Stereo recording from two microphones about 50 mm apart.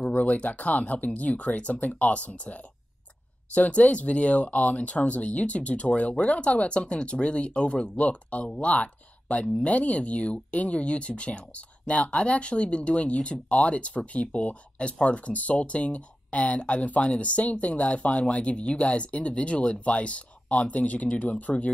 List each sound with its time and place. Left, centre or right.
0.0 s speech: left